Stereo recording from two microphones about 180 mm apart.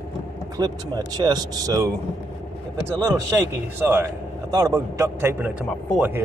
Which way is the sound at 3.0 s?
15° right (ahead or behind).